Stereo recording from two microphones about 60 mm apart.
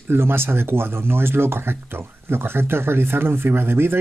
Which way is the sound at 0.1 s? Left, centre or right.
Right.